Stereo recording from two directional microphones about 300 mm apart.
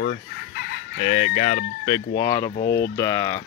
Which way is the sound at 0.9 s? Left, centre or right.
Left.